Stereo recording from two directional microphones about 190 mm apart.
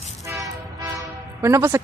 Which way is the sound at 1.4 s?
15° right (ahead or behind).